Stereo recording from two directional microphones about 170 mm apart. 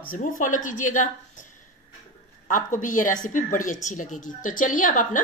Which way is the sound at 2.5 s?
50° left (ahead or behind).